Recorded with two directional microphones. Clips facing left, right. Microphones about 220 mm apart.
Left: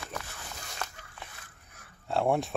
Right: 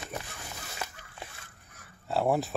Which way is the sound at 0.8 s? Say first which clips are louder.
Even; 5° right (ahead or behind).